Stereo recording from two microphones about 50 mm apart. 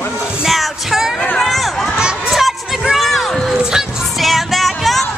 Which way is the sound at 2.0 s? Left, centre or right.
Centre.